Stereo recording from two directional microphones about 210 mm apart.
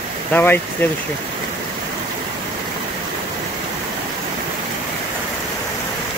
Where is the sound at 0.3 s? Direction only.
10° left (ahead or behind).